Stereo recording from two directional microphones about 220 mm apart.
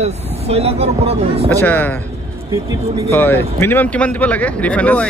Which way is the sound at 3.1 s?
10° left (ahead or behind).